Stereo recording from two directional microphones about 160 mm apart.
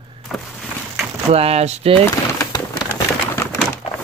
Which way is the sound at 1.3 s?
40° right (ahead or behind).